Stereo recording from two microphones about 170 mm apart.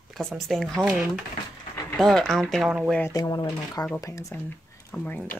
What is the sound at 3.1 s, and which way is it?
Speech, 20° left (ahead or behind).